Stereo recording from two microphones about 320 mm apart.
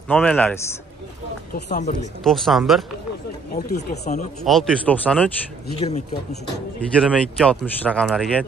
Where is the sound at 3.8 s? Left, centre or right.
Left.